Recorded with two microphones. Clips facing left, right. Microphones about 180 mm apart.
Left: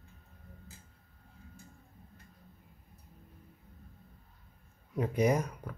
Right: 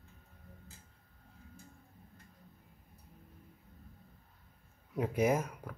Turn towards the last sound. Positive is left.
turn(degrees=-5)  # may be behind; listen again after turning